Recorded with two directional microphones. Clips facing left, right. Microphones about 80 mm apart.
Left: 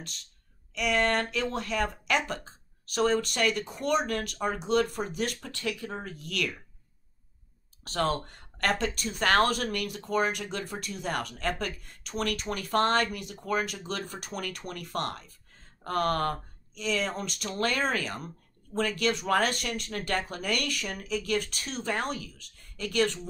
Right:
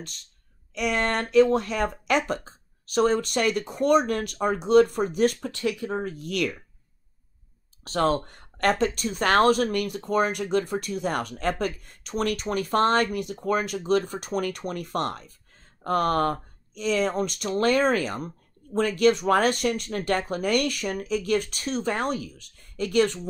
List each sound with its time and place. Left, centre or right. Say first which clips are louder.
0.7 s speech: right 1 dB; right
8.5 s speech: right 6 dB; right